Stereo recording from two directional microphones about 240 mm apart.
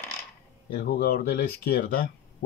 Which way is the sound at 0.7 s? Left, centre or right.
Left.